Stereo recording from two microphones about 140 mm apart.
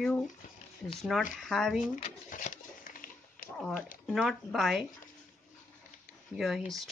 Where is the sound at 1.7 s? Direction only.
65° left (ahead or behind); by 3.5 s 90° left.